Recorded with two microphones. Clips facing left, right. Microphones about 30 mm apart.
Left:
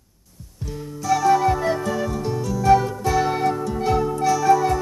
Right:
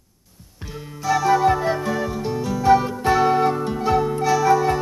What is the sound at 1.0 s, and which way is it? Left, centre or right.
Music, right.